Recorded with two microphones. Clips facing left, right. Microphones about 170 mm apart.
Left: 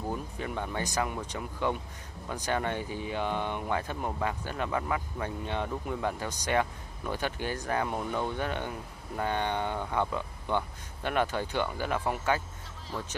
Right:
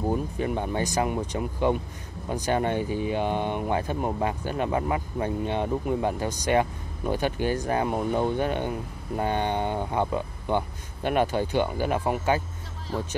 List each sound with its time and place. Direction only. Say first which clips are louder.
0.0 s speech: right 8 dB; 20° right (ahead or behind)